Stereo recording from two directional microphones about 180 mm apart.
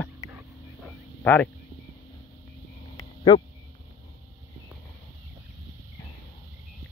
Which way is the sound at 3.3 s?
25° left (ahead or behind).